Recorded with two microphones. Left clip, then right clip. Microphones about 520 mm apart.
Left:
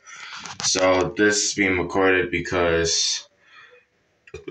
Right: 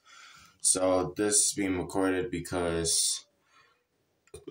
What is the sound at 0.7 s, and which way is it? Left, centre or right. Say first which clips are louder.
Speech: left 8 dB; right.